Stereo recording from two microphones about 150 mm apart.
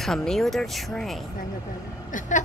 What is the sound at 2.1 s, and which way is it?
Speech, 55° left (ahead or behind).